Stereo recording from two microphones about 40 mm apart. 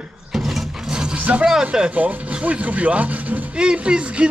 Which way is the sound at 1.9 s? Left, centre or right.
Right.